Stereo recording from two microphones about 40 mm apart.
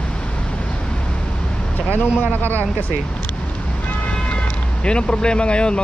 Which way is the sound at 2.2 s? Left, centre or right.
Left.